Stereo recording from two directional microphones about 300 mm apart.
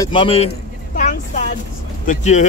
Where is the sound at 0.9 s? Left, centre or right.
Left.